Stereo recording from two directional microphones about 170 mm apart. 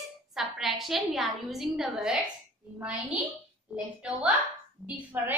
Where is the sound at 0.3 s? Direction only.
Centre (ahead or behind).